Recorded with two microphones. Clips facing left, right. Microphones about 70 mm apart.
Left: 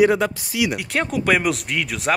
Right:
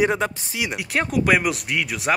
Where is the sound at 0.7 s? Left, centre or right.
Centre.